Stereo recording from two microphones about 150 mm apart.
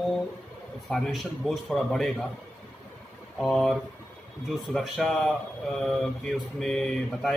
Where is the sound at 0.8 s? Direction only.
Centre (ahead or behind).